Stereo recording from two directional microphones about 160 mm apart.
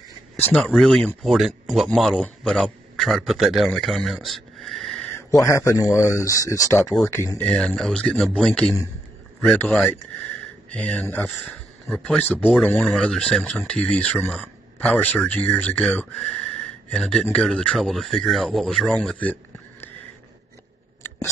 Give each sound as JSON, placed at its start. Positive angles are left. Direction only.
{"t": 0.4, "sound": "a man's voice", "side_deg": 10}
{"t": 5.3, "sound": "speech", "side_deg": 20}
{"t": 6.8, "sound": "speech", "side_deg": 0}
{"t": 7.1, "sound": "speech", "side_deg": 15}
{"t": 11.2, "sound": "speech", "side_deg": 0}
{"t": 12.4, "sound": "speech", "side_deg": -5}